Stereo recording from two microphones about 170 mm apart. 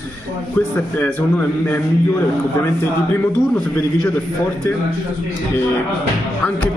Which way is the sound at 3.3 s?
10° left (ahead or behind).